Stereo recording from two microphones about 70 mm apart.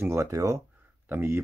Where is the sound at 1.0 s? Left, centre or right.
Right.